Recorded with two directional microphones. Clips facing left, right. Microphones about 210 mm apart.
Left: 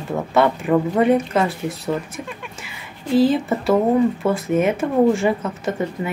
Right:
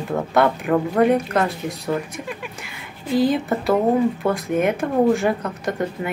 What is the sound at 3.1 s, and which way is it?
Speech, centre (ahead or behind).